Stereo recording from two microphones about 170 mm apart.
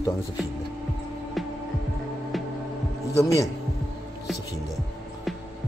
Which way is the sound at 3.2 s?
20° left (ahead or behind).